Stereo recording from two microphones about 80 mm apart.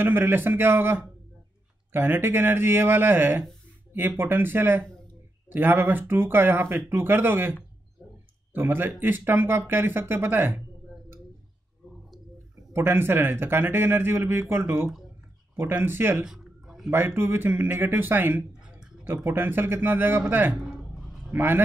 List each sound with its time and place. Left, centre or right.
0.0 s speech: right
8.5 s speech: right
12.7 s speech: right
16.3 s a sound: centre
16.9 s speech: right